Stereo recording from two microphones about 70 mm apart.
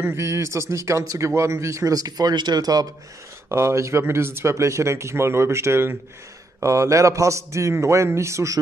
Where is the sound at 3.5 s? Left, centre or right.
Right.